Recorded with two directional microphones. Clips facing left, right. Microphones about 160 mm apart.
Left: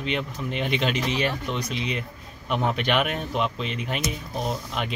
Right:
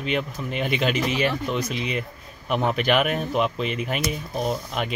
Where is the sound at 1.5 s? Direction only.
45° right (ahead or behind).